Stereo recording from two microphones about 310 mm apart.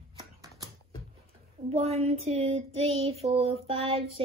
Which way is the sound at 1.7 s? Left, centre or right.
Centre.